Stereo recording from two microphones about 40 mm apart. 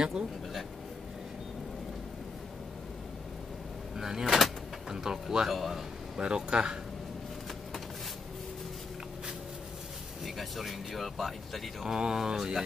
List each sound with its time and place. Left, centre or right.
0.1 s a sound: centre
3.9 s a sound: centre
4.9 s speech: centre
5.5 s speech: centre
6.1 s speech: right
10.2 s speech: centre
11.8 s speech: centre